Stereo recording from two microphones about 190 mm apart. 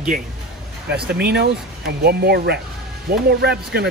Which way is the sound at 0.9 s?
60° right (ahead or behind).